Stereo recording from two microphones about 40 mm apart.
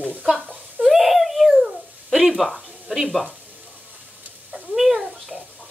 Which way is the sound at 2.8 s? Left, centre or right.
Centre.